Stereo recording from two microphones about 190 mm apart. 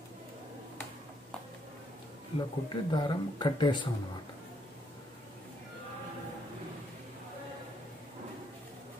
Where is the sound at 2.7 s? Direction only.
25° left (ahead or behind).